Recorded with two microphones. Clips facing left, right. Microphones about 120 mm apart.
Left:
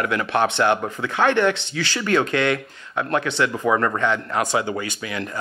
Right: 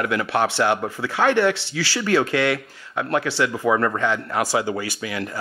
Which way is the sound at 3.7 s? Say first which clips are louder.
Right 1 dB; 45° left (ahead or behind).